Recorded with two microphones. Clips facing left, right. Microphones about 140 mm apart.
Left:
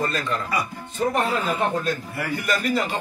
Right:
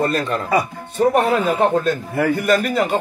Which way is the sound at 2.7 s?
55° right (ahead or behind).